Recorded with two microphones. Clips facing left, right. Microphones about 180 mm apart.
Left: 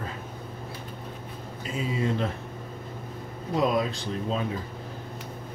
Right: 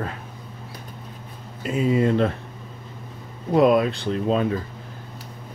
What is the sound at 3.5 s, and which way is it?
Speech, 60° right (ahead or behind).